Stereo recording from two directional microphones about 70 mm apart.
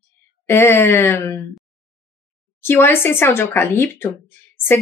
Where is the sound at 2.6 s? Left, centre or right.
Left.